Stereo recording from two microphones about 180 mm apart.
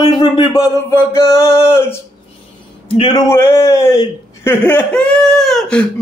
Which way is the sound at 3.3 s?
15° left (ahead or behind).